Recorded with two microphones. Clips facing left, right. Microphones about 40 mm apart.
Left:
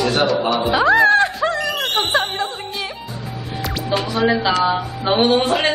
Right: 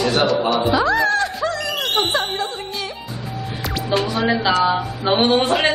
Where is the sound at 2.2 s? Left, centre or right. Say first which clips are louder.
Left 1 dB; centre.